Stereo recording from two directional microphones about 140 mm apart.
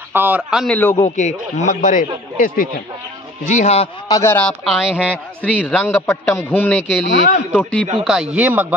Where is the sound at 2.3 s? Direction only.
90° left.